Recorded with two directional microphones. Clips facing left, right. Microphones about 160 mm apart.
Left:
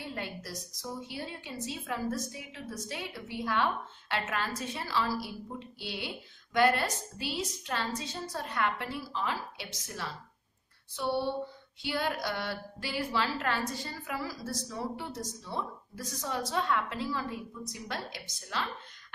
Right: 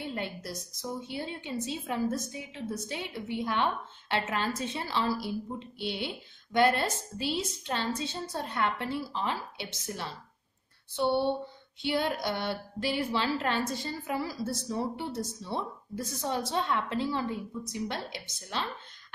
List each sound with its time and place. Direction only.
0.0 s a woman's voice: 25° right (ahead or behind)
11.8 s a woman's voice: 25° right (ahead or behind)